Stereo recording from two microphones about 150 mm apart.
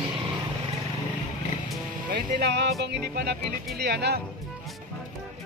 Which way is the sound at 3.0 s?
90° right.